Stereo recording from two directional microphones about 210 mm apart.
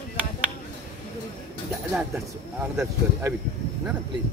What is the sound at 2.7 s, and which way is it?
Speech, 5° right (ahead or behind).